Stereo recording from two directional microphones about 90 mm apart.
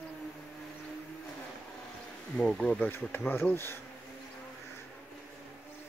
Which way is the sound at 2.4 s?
10° left (ahead or behind).